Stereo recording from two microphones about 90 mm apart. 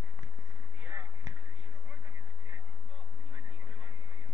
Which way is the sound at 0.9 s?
55° right (ahead or behind).